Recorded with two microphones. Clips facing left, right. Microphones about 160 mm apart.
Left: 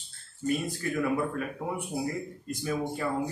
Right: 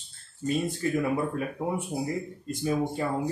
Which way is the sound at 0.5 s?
25° right (ahead or behind).